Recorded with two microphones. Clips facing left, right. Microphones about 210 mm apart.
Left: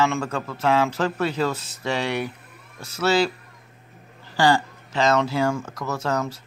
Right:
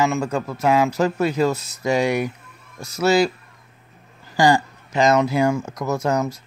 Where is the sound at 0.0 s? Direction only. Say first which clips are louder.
Right 3 dB; 10° right (ahead or behind).